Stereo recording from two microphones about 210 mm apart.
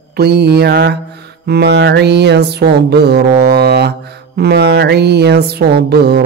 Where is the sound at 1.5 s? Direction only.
50° right (ahead or behind).